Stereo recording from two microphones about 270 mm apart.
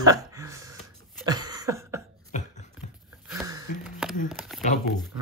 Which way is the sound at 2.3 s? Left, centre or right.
Left.